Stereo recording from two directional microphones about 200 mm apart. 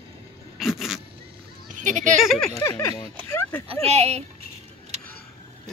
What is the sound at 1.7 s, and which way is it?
Speech, 40° right (ahead or behind).